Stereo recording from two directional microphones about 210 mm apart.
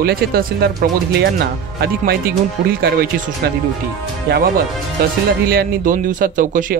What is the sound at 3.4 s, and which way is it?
Speech, 50° right (ahead or behind).